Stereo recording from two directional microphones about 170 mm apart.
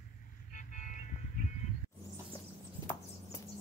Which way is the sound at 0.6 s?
50° left (ahead or behind).